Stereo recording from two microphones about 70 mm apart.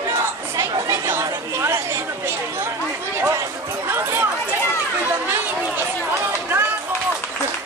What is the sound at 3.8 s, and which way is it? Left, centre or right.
Run, right.